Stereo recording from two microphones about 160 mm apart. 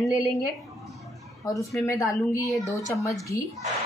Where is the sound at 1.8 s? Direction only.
20° left (ahead or behind).